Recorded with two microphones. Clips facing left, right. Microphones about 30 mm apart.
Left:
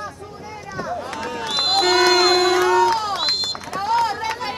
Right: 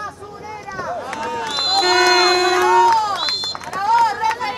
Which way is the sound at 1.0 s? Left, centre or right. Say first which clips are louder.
Right 2 dB; centre.